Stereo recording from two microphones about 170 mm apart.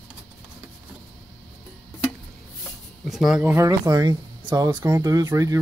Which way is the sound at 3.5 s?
20° right (ahead or behind).